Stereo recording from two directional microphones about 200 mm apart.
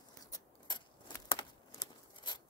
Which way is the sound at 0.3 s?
20° left (ahead or behind).